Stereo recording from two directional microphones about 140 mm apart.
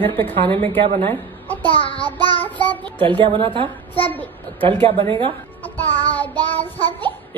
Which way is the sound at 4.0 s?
15° left (ahead or behind).